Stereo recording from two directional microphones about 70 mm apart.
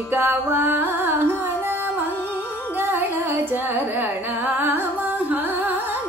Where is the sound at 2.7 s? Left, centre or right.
Right.